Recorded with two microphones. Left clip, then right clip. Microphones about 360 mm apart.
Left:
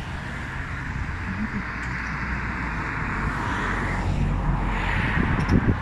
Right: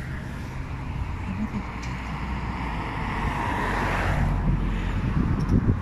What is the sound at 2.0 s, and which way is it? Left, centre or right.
Vehicle, centre.